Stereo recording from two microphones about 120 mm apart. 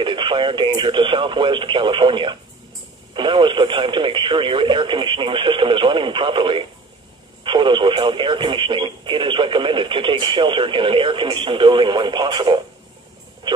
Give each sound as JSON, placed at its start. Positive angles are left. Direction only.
{"t": 0.0, "sound": "speech", "side_deg": -45}